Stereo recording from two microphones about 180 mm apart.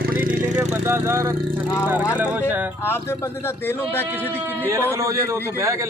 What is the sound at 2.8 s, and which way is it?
Speech, 15° left (ahead or behind).